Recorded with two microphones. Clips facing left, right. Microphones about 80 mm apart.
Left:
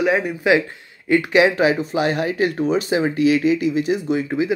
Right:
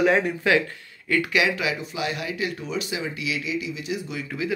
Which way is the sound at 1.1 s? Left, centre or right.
Left.